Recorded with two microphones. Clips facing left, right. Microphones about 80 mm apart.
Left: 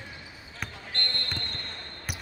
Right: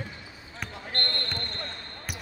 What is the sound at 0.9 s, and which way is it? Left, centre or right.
Basketball bounce, right.